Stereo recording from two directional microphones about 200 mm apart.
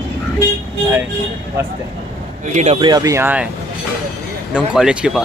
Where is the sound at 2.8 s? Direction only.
20° right (ahead or behind).